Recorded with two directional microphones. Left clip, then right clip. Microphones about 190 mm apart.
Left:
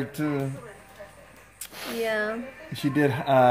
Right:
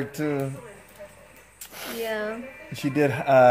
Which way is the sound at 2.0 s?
35° left (ahead or behind).